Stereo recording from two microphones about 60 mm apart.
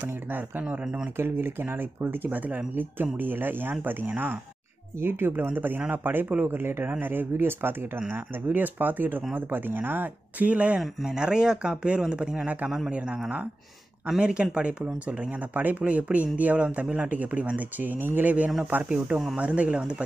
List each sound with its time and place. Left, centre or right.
0.0 s speech: right
1.1 s speech: right
11.1 s speech: centre
14.2 s speech: centre